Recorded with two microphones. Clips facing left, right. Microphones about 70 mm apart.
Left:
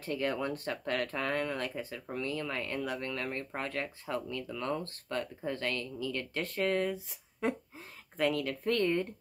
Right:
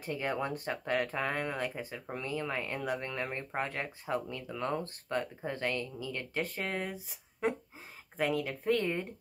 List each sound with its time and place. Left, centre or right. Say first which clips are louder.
0.0 s speech: left 1 dB; centre
6.4 s speech: left 7 dB; centre